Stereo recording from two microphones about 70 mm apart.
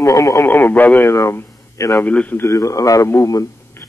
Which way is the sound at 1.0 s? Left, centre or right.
Left.